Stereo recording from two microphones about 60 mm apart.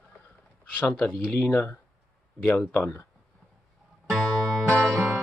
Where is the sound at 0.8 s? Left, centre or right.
Left.